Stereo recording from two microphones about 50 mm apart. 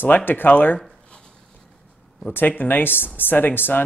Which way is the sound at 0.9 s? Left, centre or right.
Left.